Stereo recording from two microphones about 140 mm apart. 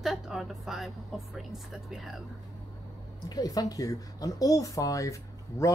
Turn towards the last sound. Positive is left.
turn(degrees=20)  # may be behind; listen again after turning